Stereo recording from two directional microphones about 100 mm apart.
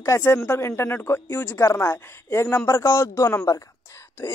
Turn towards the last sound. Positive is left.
turn(degrees=30)  # may be behind; listen again after turning